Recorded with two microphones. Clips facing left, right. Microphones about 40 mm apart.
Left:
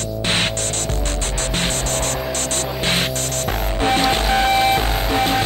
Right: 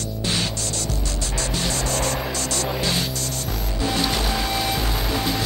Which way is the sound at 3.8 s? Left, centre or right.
Left.